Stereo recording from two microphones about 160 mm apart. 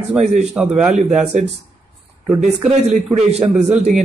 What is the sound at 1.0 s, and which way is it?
A man's voice, 50° right (ahead or behind).